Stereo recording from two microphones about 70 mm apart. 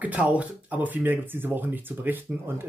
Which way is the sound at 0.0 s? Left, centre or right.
Right.